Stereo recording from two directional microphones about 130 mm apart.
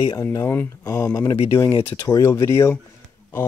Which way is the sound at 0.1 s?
25° left (ahead or behind).